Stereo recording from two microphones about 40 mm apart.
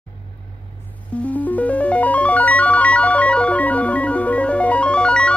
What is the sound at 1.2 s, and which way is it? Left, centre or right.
Music, left.